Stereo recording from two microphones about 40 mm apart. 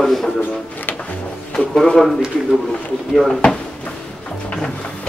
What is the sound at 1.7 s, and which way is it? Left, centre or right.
Speech, centre.